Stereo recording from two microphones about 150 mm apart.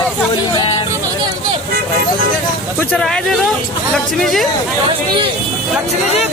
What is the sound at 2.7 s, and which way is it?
Speech, 5° left (ahead or behind).